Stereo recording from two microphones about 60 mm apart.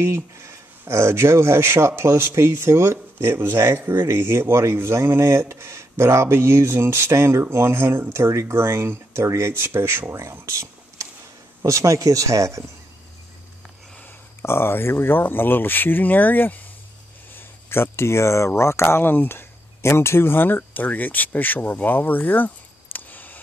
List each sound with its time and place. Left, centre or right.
0.8 s speech: right
3.7 s speech: right
4.1 s speech: right
10.3 s a sound: right
11.6 s speech: right
14.4 s speech: left
17.3 s a sound: left
18.6 s speech: left
22.9 s a sound: left